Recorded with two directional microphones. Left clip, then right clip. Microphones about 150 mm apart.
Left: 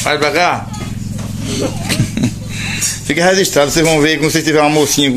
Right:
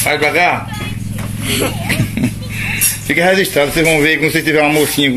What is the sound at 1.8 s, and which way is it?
Speech, 15° left (ahead or behind).